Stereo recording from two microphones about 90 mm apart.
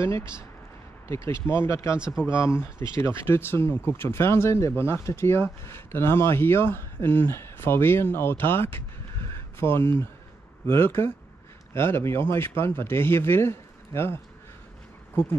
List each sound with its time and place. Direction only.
0.0 s speech: 30° left (ahead or behind)
2.0 s speech: 10° right (ahead or behind)
2.2 s speech: 30° left (ahead or behind)
9.3 s a sound: 25° left (ahead or behind)
10.7 s speech: 30° left (ahead or behind)